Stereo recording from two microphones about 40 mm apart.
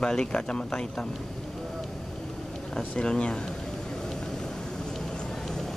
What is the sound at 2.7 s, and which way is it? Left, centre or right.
Speech, left.